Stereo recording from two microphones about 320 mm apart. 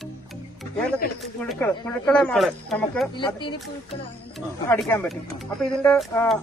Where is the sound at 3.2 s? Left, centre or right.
Centre.